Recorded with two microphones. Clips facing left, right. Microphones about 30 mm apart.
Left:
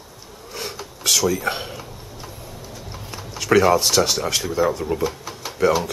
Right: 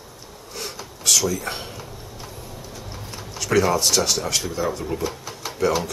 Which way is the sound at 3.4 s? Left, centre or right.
Centre.